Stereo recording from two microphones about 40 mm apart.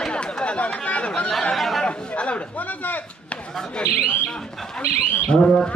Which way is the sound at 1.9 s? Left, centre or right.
Left.